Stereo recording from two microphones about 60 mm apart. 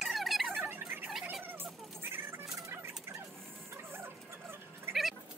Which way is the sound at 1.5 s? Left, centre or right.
Right.